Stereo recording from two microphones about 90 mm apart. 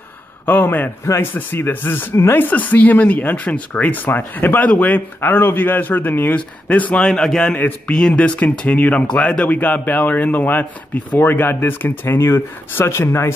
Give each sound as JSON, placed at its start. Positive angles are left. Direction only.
{"t": 0.5, "sound": "speech", "side_deg": 20}
{"t": 7.0, "sound": "a man's voice", "side_deg": 5}